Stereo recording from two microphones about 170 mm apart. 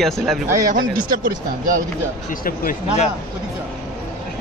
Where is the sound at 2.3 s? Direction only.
55° left (ahead or behind).